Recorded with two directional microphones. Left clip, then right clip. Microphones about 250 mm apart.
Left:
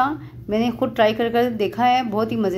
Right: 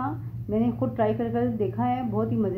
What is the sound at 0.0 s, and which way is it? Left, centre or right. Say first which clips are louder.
A woman's voice: left 11 dB; left.